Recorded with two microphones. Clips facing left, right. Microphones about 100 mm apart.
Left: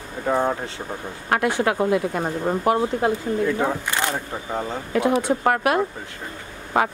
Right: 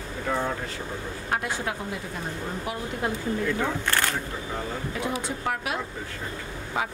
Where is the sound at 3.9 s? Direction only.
20° left (ahead or behind).